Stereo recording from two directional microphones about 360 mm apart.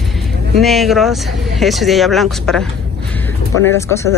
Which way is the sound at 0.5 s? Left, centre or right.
Centre.